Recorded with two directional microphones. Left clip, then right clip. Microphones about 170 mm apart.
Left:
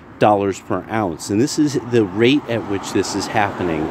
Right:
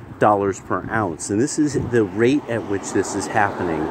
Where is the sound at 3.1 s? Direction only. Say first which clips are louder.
Right 1 dB; 30° left (ahead or behind).